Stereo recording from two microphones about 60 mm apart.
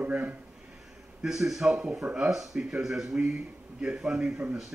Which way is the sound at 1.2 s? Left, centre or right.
Centre.